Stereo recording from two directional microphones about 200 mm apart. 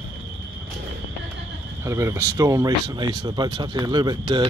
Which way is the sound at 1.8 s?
15° right (ahead or behind).